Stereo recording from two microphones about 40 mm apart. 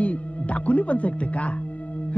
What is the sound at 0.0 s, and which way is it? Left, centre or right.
Speech, left.